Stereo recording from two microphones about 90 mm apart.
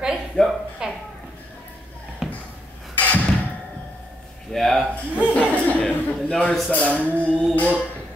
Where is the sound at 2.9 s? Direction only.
15° left (ahead or behind).